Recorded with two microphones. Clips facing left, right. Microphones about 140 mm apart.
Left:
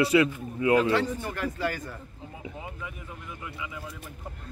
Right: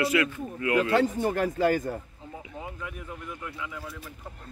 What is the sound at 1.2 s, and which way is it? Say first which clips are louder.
Speech: right 6 dB; 40° right (ahead or behind).